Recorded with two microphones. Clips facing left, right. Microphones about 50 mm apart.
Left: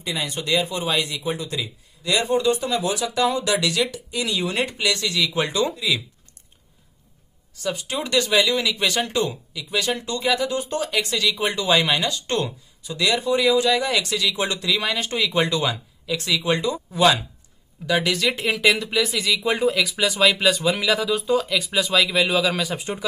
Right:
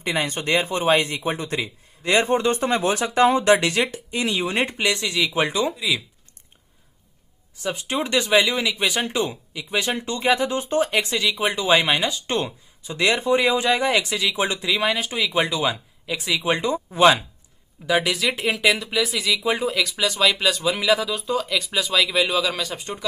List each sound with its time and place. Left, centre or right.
0.0 s speech: right; by 6.0 s centre
7.5 s speech: right
12.8 s speech: right; by 16.4 s centre
16.4 s speech: right
17.8 s speech: centre